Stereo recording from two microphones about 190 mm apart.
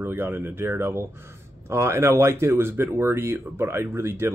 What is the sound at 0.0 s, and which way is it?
Speech, 10° right (ahead or behind).